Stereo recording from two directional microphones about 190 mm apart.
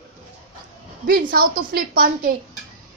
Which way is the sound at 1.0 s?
50° right (ahead or behind).